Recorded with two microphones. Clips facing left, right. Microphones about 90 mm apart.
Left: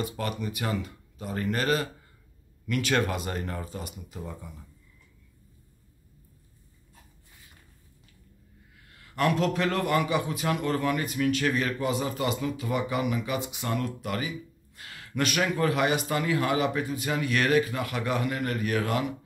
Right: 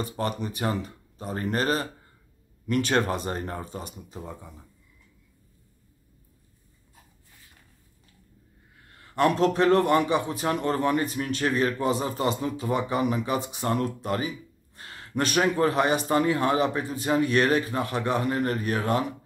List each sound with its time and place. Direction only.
0.0 s a man's voice: 35° right (ahead or behind)
8.8 s a man's voice: 35° right (ahead or behind)